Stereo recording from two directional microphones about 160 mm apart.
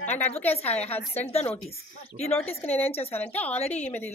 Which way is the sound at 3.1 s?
10° left (ahead or behind).